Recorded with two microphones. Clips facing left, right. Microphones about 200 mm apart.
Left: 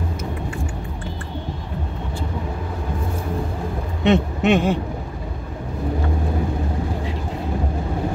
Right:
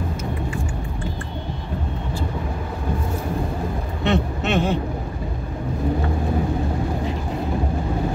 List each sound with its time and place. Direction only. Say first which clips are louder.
4.0 s speech: left 5 dB; 15° left (ahead or behind)